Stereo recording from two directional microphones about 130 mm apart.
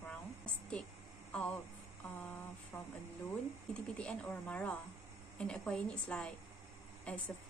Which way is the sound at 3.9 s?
10° left (ahead or behind).